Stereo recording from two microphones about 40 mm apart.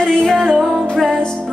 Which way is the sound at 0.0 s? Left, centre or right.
Centre.